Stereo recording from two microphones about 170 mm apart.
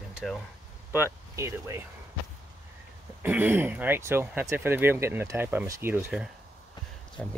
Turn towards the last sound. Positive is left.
turn(degrees=10)  # may be behind; listen again after turning